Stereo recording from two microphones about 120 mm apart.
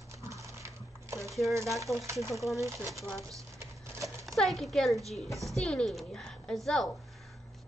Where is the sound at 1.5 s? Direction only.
25° right (ahead or behind).